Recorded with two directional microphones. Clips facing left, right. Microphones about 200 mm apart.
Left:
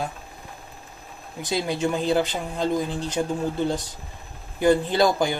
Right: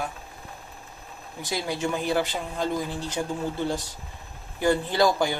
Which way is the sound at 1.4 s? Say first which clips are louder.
Left 4 dB; 20° left (ahead or behind).